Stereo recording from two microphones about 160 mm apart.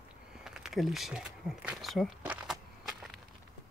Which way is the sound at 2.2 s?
5° right (ahead or behind).